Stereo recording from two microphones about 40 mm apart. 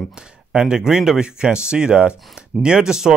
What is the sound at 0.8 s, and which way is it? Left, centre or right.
Speech, centre.